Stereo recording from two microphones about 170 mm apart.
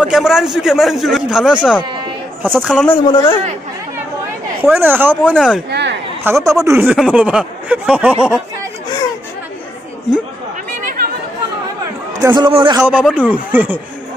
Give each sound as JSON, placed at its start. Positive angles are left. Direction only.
{"t": 0.0, "sound": "a man's voice", "side_deg": -5}
{"t": 3.1, "sound": "a man's voice", "side_deg": 25}
{"t": 4.6, "sound": "speech", "side_deg": -10}
{"t": 5.7, "sound": "a sound", "side_deg": -90}
{"t": 6.2, "sound": "speech", "side_deg": -15}
{"t": 12.2, "sound": "a man's voice", "side_deg": -25}
{"t": 12.7, "sound": "speech", "side_deg": -10}